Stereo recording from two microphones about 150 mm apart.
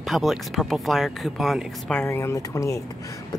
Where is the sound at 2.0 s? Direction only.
15° left (ahead or behind).